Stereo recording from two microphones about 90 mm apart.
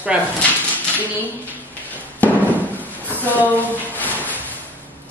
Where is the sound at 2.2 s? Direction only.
20° left (ahead or behind).